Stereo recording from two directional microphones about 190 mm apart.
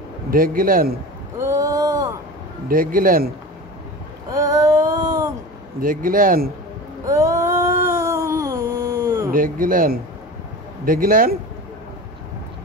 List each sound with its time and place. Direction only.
0.3 s speech: 50° right (ahead or behind)
1.4 s boat: 15° right (ahead or behind)
2.7 s speech: 45° right (ahead or behind)
4.3 s a sound: 20° right (ahead or behind)
5.8 s speech: 45° right (ahead or behind)
7.1 s a sound: 15° right (ahead or behind)
9.3 s speech: 45° right (ahead or behind)